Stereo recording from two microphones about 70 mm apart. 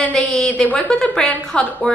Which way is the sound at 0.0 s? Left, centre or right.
Centre.